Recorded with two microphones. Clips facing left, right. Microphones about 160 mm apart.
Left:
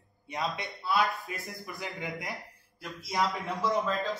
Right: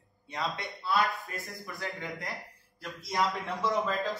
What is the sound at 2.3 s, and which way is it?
A man's voice, centre (ahead or behind).